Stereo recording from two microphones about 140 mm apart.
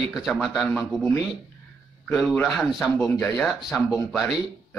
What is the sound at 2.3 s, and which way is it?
Speech, 5° left (ahead or behind).